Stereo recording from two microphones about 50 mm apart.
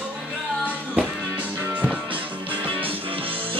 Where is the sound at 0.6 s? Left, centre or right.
Right.